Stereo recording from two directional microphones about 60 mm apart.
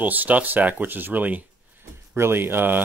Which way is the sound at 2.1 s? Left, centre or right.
Right.